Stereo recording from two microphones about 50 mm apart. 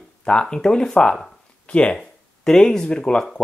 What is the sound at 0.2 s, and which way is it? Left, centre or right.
Speech, centre.